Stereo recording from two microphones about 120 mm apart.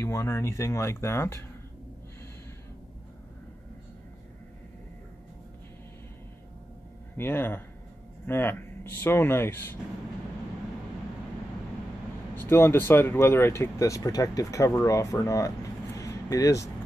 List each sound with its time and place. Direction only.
0.0 s speech: 25° left (ahead or behind)
7.2 s speech: 20° left (ahead or behind)
12.4 s speech: 20° left (ahead or behind)